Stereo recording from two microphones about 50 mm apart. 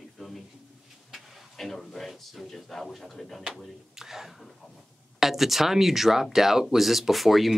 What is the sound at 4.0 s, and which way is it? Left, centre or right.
Speech, centre.